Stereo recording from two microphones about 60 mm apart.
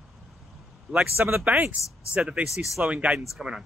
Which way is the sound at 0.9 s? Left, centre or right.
Right.